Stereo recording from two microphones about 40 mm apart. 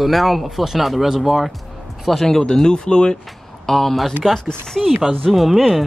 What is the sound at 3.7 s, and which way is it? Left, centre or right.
Speech, centre.